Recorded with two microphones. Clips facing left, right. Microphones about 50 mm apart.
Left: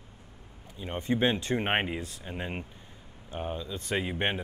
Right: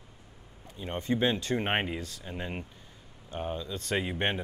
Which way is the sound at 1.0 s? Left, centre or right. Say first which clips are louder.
Left 1 dB; left.